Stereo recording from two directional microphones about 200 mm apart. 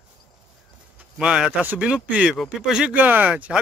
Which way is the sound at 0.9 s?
5° right (ahead or behind).